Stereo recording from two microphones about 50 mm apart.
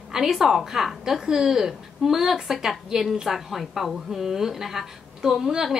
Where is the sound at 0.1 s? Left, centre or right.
Centre.